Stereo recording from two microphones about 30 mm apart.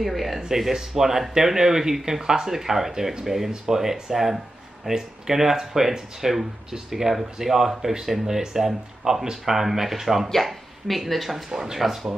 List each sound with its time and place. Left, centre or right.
0.0 s speech: centre
10.4 s speech: centre
11.5 s speech: centre
11.8 s speech: centre